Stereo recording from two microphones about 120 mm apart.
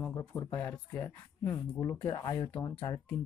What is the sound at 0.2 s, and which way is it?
Speech, 10° left (ahead or behind).